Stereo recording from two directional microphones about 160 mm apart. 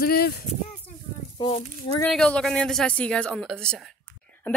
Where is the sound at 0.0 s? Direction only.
70° left (ahead or behind).